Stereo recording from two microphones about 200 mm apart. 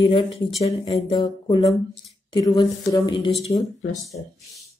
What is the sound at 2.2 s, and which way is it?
A woman's voice, 20° left (ahead or behind).